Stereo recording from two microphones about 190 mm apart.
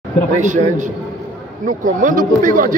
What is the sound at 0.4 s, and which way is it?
Speech, 40° right (ahead or behind).